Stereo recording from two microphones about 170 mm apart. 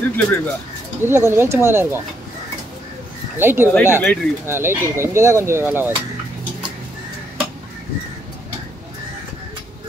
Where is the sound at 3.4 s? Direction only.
10° right (ahead or behind).